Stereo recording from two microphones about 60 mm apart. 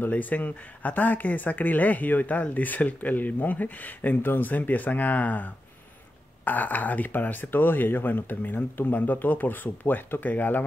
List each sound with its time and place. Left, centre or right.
0.1 s speech: left